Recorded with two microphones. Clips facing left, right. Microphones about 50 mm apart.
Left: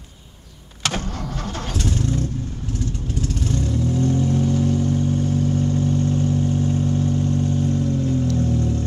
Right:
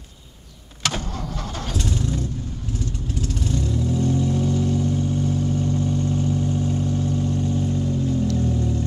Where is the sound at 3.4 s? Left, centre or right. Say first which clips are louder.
Even; left.